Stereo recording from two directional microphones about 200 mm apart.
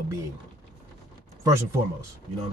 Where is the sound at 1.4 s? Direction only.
15° right (ahead or behind).